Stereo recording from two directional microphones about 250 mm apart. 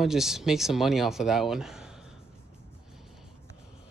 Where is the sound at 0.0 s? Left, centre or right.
Centre.